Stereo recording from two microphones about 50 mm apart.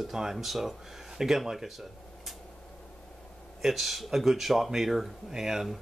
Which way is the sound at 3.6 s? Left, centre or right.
Centre.